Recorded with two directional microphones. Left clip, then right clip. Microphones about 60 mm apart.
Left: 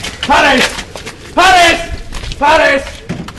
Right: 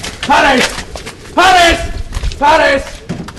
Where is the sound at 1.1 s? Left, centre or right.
Centre.